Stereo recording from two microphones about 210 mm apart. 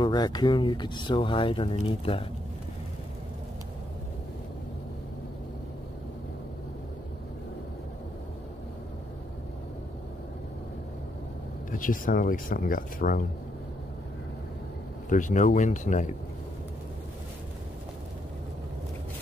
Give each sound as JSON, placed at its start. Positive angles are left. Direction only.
{"t": 0.0, "sound": "speech", "side_deg": 20}
{"t": 11.7, "sound": "speech", "side_deg": 40}
{"t": 15.0, "sound": "speech", "side_deg": 35}